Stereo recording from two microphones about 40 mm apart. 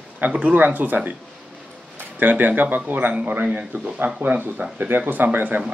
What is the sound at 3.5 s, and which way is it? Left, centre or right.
Speech, right.